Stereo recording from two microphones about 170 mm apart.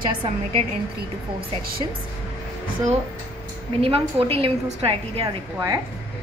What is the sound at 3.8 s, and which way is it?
A woman's voice, 35° right (ahead or behind).